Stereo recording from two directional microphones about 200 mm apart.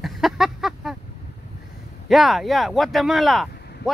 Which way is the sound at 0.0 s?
Centre (ahead or behind).